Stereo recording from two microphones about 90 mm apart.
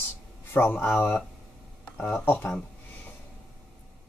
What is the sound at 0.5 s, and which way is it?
Speech, 25° left (ahead or behind).